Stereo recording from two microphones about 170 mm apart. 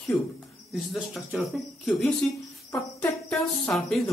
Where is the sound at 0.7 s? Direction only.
Centre (ahead or behind).